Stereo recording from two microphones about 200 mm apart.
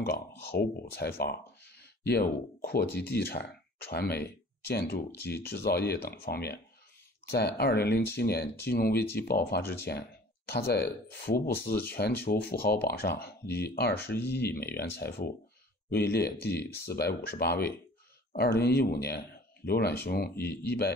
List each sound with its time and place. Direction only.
0.4 s speech: 50° left (ahead or behind)
9.6 s speech: 10° left (ahead or behind)
9.8 s speech: 55° left (ahead or behind)